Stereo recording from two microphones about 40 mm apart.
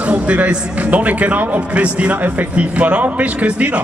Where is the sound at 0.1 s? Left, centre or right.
Right.